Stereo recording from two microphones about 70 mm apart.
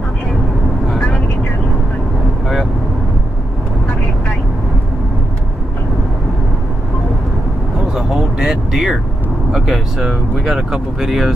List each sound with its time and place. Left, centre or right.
0.9 s vehicle: centre
7.9 s vehicle: centre
9.5 s speech: centre